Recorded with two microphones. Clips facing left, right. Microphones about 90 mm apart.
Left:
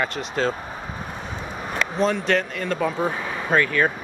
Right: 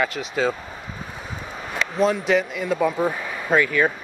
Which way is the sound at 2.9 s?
10° left (ahead or behind).